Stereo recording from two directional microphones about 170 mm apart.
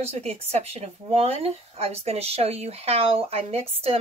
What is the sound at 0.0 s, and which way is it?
Speech, 35° right (ahead or behind).